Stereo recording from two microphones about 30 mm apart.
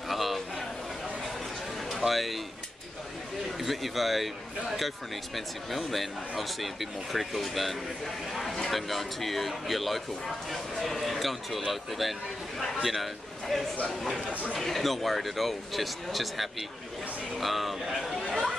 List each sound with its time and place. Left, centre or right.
0.1 s a sound: centre
1.9 s speech: centre
3.5 s a man's voice: centre